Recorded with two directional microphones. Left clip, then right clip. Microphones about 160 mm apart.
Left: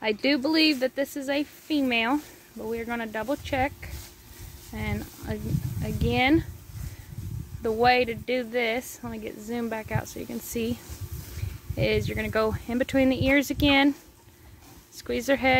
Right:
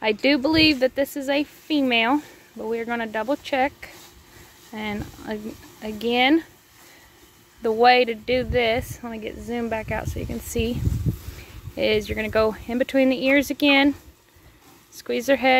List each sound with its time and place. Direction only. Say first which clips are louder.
0.0 s a woman's voice: right 5 dB; 20° right (ahead or behind)
7.6 s speech: right 5 dB; 20° right (ahead or behind)
15.0 s speech: right 4 dB; 10° right (ahead or behind)